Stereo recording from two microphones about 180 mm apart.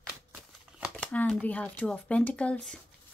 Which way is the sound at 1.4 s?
10° left (ahead or behind).